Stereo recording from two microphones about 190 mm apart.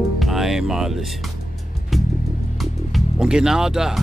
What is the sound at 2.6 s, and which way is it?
Music, centre (ahead or behind).